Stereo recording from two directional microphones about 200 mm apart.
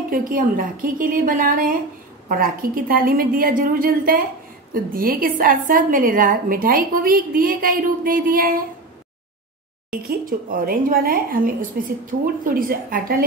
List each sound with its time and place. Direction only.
0.1 s a woman's voice: 45° right (ahead or behind)
9.8 s a woman's voice: 45° right (ahead or behind)